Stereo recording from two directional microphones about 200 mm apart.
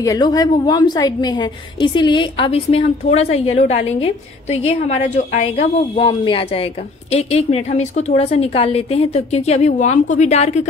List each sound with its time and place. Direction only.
0.0 s a woman's voice: 20° left (ahead or behind); by 10.7 s 35° left (ahead or behind)